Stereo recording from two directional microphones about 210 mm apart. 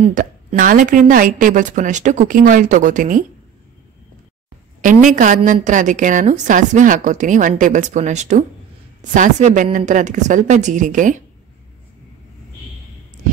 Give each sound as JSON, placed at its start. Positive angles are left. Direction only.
{"t": 0.0, "sound": "a woman's voice", "side_deg": -35}
{"t": 4.8, "sound": "a woman's voice", "side_deg": -35}